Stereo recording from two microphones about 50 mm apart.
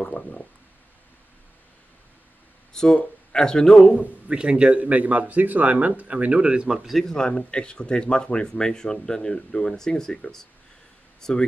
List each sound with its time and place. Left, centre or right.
0.1 s stomach rumble: left
2.7 s a sound: centre
3.3 s speech: centre
4.3 s speech: centre
6.8 s speech: centre
7.1 s speech: centre